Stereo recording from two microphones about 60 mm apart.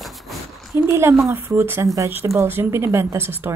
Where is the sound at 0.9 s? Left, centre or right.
Right.